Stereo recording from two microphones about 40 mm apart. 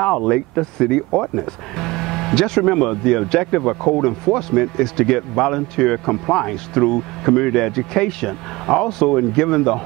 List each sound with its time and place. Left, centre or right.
0.0 s speech: centre